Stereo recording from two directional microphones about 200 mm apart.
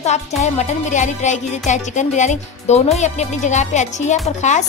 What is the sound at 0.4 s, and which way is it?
Speech, 35° left (ahead or behind).